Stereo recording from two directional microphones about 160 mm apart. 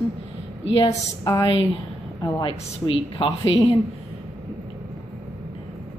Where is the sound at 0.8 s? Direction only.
20° left (ahead or behind).